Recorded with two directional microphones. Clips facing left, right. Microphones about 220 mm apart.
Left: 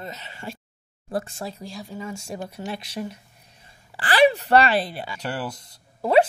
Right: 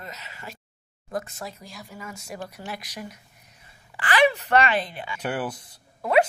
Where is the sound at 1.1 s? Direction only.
30° left (ahead or behind).